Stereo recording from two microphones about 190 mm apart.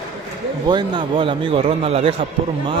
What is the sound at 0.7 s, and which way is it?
A man's voice, 25° right (ahead or behind).